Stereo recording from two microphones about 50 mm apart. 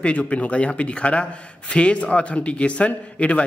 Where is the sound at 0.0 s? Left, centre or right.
Left.